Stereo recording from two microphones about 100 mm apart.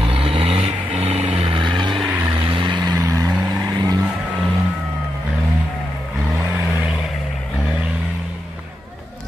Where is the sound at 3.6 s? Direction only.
40° right (ahead or behind).